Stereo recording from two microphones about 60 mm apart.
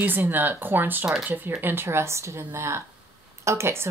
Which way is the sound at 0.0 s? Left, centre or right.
Right.